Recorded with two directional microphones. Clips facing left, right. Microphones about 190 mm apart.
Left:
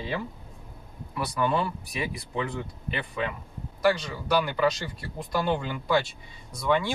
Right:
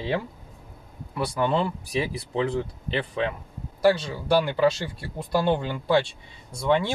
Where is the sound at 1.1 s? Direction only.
30° right (ahead or behind).